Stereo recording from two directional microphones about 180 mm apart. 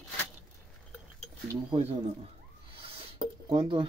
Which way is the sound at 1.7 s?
35° right (ahead or behind).